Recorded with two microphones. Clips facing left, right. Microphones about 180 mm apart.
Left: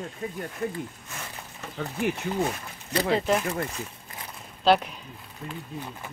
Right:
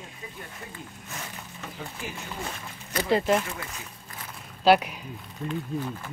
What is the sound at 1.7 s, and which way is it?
Speech, 65° left (ahead or behind).